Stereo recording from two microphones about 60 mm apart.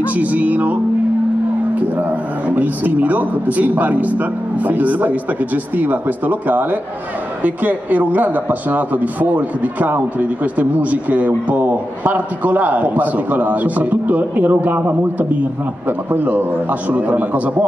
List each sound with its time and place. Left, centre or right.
0.0 s speech: right
2.4 s speech: right